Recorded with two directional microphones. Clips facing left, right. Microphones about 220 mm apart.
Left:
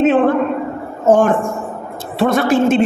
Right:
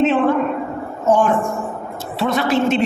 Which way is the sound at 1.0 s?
55° left (ahead or behind).